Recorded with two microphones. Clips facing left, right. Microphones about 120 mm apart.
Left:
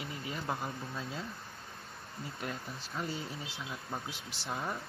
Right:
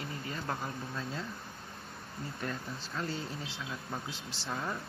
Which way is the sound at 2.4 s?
10° left (ahead or behind).